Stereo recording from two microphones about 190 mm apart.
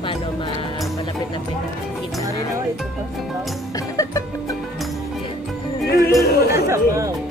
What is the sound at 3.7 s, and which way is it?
Music, 15° left (ahead or behind).